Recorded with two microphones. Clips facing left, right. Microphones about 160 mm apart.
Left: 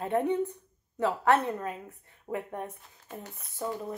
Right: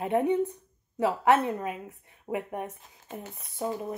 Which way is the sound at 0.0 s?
15° right (ahead or behind).